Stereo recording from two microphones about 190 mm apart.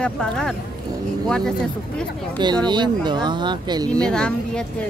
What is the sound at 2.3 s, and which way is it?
Speech, 25° right (ahead or behind).